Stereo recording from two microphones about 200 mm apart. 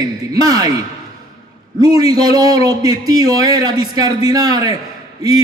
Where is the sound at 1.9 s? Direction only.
20° right (ahead or behind).